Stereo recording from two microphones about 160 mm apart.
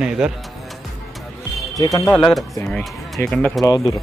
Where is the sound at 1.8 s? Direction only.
20° left (ahead or behind).